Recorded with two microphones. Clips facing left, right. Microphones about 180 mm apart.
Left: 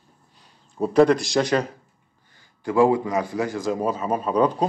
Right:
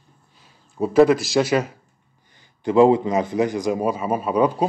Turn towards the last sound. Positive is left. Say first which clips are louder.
# right 1 dB
turn(degrees=-10)  # may be behind; listen again after turning